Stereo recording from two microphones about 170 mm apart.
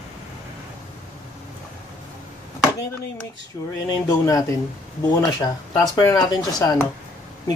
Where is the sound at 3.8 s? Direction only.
20° left (ahead or behind).